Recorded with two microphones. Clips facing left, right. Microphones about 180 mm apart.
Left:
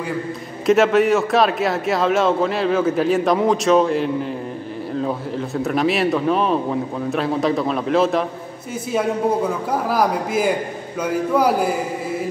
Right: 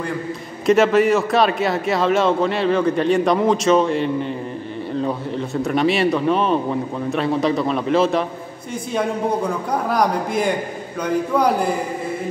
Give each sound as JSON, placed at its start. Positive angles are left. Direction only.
{"t": 0.7, "sound": "a man's voice", "side_deg": 0}